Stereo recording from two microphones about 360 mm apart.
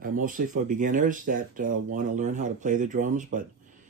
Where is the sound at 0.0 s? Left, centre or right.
Right.